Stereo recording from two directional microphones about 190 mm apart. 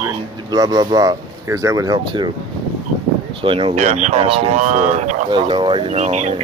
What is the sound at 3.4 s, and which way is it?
Speech, 25° right (ahead or behind).